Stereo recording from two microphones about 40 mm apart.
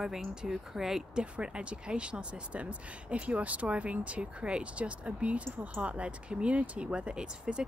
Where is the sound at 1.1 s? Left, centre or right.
Right.